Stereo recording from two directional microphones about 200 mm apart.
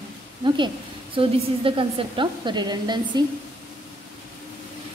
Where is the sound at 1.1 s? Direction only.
25° right (ahead or behind).